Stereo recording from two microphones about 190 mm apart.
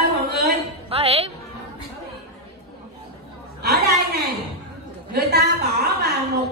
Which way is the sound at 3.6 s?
60° right (ahead or behind).